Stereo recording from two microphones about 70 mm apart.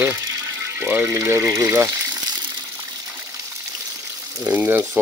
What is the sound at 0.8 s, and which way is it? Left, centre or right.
Speech, right.